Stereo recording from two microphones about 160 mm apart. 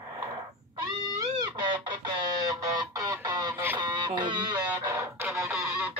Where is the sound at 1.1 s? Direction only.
25° right (ahead or behind).